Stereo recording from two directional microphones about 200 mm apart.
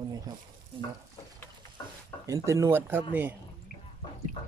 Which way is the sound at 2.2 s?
15° right (ahead or behind).